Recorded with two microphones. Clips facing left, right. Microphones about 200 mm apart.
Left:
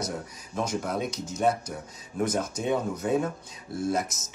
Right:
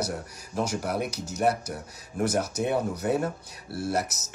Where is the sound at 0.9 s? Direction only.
70° right (ahead or behind).